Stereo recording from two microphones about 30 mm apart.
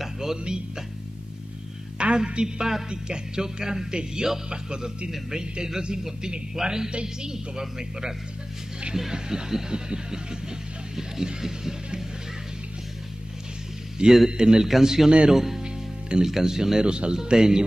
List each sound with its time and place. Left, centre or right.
0.0 s music: centre
2.0 s a woman's voice: right
2.4 s music: right
4.5 s a man's voice: right
5.3 s music: right
9.1 s music: right
11.4 s music: centre
14.0 s music: right
15.0 s a man's voice: right
15.3 s speech: centre
15.6 s music: right
16.3 s music: centre
16.8 s a man's voice: right
17.2 s music: right